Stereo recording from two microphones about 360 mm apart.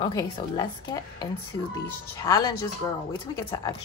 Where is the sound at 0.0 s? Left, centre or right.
Centre.